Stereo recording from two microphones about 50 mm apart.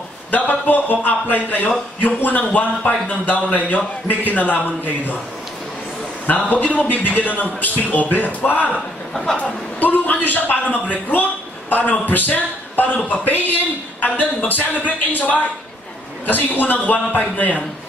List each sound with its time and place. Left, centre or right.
0.3 s a man's voice: left
6.2 s a man's voice: left
8.7 s a man's voice: centre
9.4 s a man's voice: left